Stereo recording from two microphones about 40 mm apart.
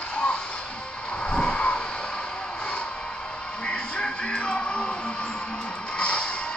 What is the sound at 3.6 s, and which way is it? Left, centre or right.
Music, left.